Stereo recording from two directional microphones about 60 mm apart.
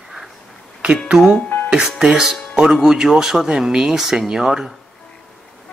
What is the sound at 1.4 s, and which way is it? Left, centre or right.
Music, left.